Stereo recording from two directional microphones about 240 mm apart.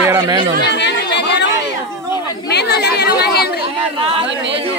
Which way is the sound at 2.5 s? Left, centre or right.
Left.